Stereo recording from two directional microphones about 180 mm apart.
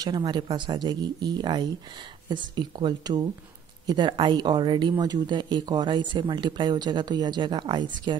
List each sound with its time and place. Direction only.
0.0 s speech: 25° right (ahead or behind)